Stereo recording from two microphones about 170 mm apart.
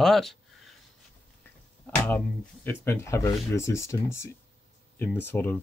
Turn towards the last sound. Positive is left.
turn(degrees=10)  # may be behind; listen again after turning